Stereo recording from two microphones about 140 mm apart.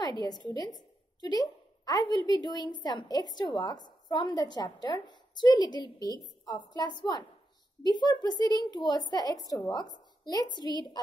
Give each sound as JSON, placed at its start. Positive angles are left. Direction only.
{"t": 0.2, "sound": "a woman's voice", "side_deg": 30}